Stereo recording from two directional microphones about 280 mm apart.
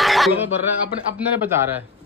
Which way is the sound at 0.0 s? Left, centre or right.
Centre.